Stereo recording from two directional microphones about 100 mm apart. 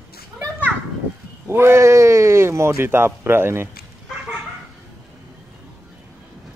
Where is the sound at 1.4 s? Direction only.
25° right (ahead or behind).